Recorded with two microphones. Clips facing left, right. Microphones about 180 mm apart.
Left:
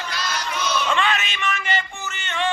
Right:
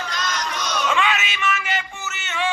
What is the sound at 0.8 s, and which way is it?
Music, 5° right (ahead or behind).